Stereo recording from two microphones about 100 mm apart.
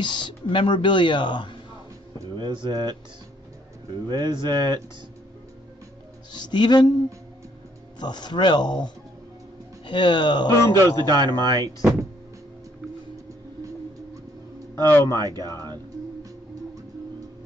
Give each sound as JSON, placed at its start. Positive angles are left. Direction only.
{"t": 0.0, "sound": "speech", "side_deg": 50}
{"t": 2.3, "sound": "speech", "side_deg": -50}
{"t": 4.1, "sound": "speech", "side_deg": -45}
{"t": 6.3, "sound": "speech", "side_deg": 50}
{"t": 8.0, "sound": "speech", "side_deg": 45}
{"t": 10.5, "sound": "a man's voice", "side_deg": 30}
{"t": 11.1, "sound": "speech", "side_deg": -45}
{"t": 14.9, "sound": "speech", "side_deg": 20}
{"t": 15.1, "sound": "speech", "side_deg": -45}